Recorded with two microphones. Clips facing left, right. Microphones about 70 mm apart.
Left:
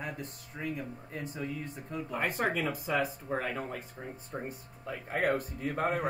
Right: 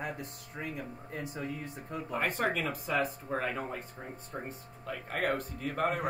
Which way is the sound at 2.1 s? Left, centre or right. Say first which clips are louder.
Even; centre.